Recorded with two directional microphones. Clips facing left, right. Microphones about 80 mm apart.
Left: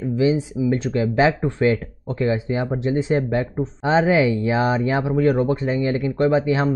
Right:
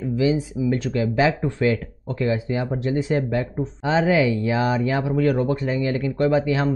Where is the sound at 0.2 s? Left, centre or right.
Left.